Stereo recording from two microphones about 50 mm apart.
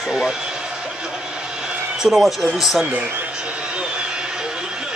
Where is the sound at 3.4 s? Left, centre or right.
Right.